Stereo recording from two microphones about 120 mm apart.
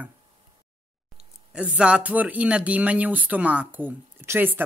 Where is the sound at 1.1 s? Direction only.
10° right (ahead or behind).